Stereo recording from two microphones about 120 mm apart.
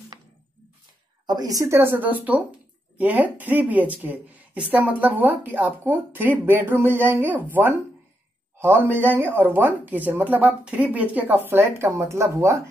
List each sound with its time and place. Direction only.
1.2 s a woman's voice: 35° right (ahead or behind)